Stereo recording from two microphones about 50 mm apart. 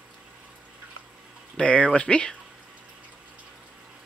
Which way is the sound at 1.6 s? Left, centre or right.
Left.